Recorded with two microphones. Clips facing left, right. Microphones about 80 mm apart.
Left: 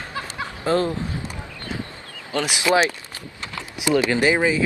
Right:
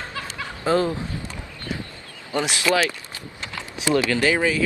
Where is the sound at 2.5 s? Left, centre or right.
Left.